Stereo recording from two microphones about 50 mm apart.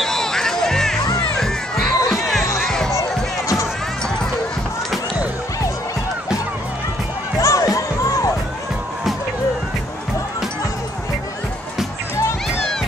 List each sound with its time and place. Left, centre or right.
0.0 s music: centre
1.4 s crowd: centre
2.1 s music: centre
2.9 s music: left
7.3 s music: left